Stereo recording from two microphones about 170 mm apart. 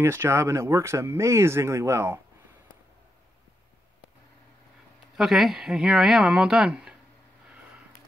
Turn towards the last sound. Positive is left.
turn(degrees=-5)  # may be behind; listen again after turning